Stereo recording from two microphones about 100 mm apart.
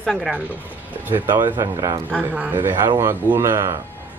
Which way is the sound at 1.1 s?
20° right (ahead or behind).